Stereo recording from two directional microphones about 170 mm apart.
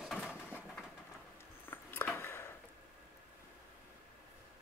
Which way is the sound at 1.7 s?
10° left (ahead or behind).